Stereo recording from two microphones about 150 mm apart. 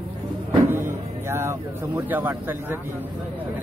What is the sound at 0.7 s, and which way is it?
Speech, 15° right (ahead or behind).